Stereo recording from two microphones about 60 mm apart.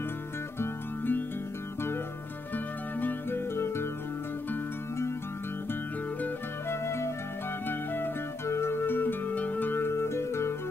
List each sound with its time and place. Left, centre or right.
0.6 s music: left
2.5 s music: left
6.7 s flute: left
7.6 s music: left